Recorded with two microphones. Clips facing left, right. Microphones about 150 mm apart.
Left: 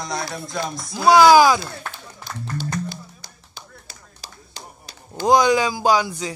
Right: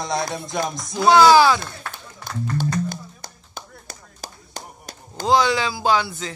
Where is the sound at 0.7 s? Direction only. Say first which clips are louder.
Left 1 dB; 5° left (ahead or behind).